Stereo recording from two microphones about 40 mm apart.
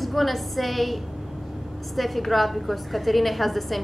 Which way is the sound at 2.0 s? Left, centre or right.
Centre.